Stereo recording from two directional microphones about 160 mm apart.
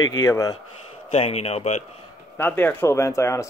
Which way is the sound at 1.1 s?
40° left (ahead or behind).